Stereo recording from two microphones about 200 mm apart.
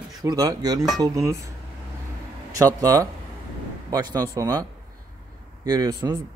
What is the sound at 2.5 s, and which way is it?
Speech, 15° right (ahead or behind).